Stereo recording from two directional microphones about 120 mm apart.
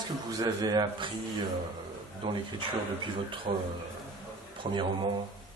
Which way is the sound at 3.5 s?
45° right (ahead or behind).